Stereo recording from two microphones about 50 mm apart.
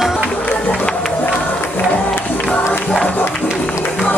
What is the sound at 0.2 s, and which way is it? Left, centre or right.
Music, left.